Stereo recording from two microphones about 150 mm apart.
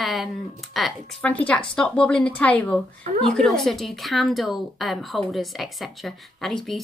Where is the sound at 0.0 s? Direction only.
Centre (ahead or behind).